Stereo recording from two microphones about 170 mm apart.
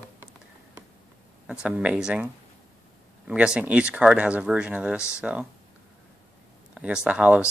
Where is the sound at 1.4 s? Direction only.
5° right (ahead or behind).